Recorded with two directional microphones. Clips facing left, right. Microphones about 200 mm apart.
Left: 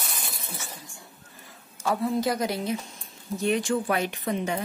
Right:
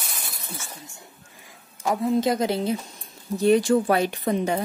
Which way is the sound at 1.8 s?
20° right (ahead or behind).